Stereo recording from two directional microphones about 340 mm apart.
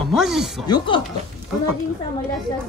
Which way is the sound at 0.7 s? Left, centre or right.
Centre.